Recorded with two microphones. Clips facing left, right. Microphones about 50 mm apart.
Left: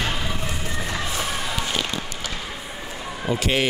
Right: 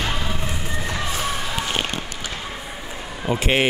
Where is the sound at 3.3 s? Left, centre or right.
Right.